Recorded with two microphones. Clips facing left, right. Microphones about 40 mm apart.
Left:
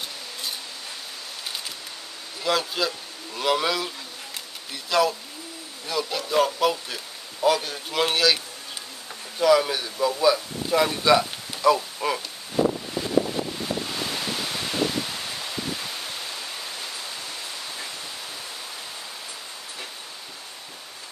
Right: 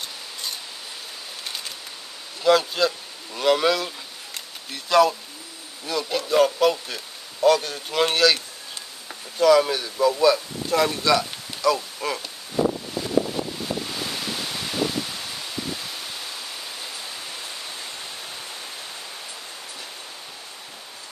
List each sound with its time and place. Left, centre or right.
2.4 s speech: centre
9.4 s speech: centre
11.1 s a sound: centre
12.0 s speech: centre
13.8 s ocean: centre